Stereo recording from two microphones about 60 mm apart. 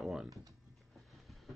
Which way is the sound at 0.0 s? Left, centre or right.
Centre.